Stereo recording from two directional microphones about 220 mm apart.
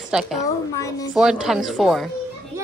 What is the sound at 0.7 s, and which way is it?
Speech, 15° left (ahead or behind).